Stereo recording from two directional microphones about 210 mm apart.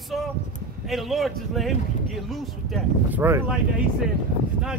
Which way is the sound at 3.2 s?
10° right (ahead or behind).